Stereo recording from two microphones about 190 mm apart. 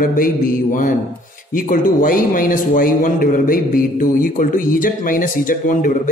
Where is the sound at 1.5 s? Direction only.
45° left (ahead or behind).